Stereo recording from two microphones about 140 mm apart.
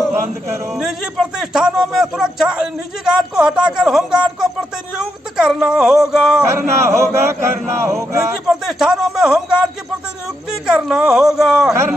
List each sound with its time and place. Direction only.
0.7 s a man's voice: centre (ahead or behind)
6.4 s chant: 20° right (ahead or behind)
8.5 s a sound: 5° right (ahead or behind)
10.5 s a man's voice: 5° right (ahead or behind)